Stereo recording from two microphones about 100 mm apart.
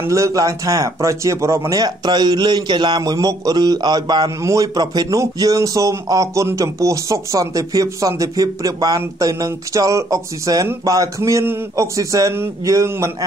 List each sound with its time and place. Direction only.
0.0 s speech: 30° right (ahead or behind)
4.4 s speech: 35° right (ahead or behind)